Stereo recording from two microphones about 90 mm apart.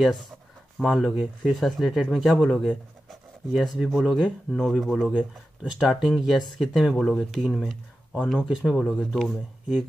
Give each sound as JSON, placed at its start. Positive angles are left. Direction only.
{"t": 0.7, "sound": "speech", "side_deg": 0}
{"t": 3.1, "sound": "a sound", "side_deg": 0}
{"t": 3.7, "sound": "speech", "side_deg": -5}